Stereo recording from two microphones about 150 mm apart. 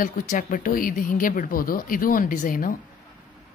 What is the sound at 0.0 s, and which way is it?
Speech, 70° left (ahead or behind).